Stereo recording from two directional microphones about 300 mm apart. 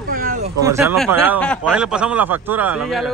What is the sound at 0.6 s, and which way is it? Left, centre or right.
Speech, centre.